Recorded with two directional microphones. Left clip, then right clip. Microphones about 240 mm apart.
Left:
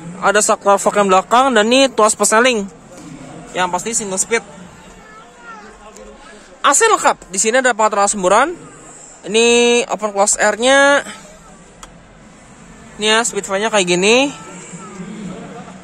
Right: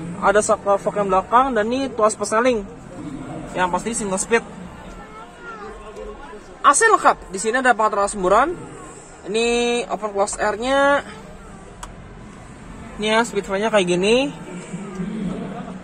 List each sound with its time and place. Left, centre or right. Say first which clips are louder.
0.2 s speech: left 3 dB; left
6.6 s speech: left 2 dB; left
13.0 s speech: left 4 dB; left